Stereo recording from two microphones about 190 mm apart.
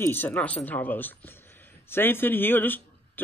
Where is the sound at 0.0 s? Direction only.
10° left (ahead or behind).